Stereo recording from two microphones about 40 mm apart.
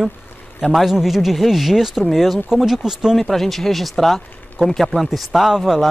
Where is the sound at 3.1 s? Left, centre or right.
Centre.